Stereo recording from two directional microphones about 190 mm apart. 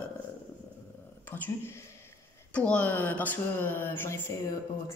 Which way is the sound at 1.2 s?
10° left (ahead or behind).